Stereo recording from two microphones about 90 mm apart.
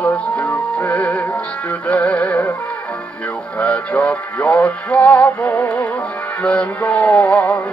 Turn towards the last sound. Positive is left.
turn(degrees=15)  # may be behind; listen again after turning